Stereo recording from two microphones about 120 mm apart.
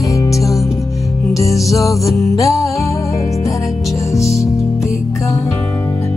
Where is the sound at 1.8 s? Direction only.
Centre (ahead or behind).